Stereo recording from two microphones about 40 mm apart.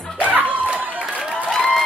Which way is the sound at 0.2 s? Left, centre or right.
Right.